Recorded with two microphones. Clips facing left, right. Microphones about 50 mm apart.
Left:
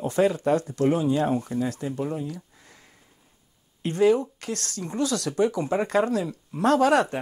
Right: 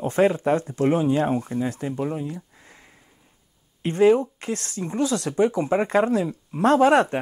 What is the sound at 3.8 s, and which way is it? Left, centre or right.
Speech, right.